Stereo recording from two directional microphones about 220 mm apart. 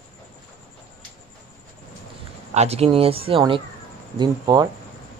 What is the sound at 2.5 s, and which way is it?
Speech, 30° right (ahead or behind).